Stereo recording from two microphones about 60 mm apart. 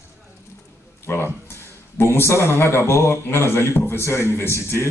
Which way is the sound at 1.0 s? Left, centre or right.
Left.